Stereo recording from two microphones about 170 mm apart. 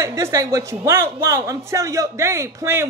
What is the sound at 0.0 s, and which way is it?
Speech, 15° right (ahead or behind).